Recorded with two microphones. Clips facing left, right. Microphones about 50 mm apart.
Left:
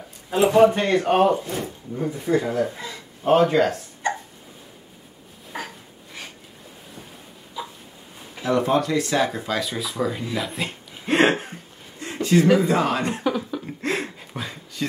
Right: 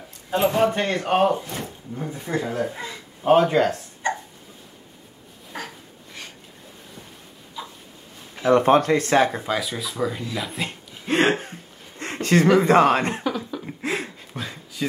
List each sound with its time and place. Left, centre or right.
0.3 s speech: centre
5.5 s a sound: centre
8.5 s speech: right
9.4 s speech: centre
9.7 s speech: centre
12.0 s speech: right
13.2 s a sound: centre